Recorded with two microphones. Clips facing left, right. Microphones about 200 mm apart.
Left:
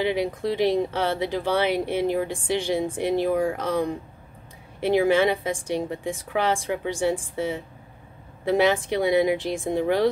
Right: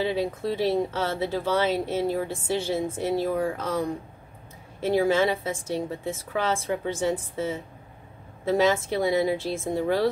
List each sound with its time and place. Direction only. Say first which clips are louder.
0.0 s speech: left 2 dB; 15° left (ahead or behind)
4.7 s speech: left 2 dB; 15° left (ahead or behind)